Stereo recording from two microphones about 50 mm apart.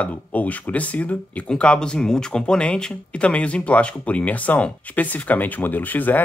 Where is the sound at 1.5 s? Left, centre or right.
Centre.